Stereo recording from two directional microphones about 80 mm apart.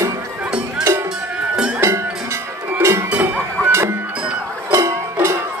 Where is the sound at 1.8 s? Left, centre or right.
Right.